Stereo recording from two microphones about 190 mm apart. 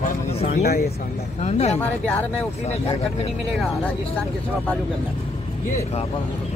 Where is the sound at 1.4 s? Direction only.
35° left (ahead or behind).